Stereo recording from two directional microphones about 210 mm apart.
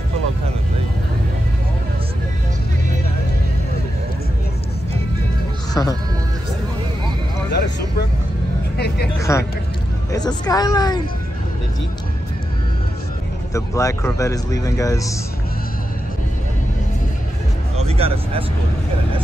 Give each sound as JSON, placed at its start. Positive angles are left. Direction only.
{"t": 5.8, "sound": "speech", "side_deg": 15}
{"t": 8.7, "sound": "speech", "side_deg": 50}
{"t": 9.2, "sound": "speech", "side_deg": 15}
{"t": 13.5, "sound": "speech", "side_deg": 15}
{"t": 17.8, "sound": "speech", "side_deg": -30}